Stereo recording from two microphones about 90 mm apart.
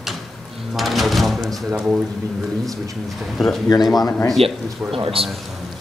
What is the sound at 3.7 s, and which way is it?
Speech, 45° left (ahead or behind).